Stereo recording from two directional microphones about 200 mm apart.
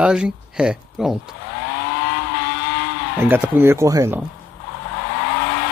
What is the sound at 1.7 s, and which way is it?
Vehicle, 55° left (ahead or behind).